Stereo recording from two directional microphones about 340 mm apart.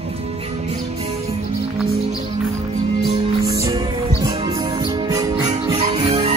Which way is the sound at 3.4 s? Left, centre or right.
Centre.